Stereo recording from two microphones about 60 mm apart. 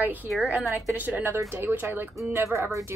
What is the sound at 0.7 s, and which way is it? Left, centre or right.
A woman's voice, right.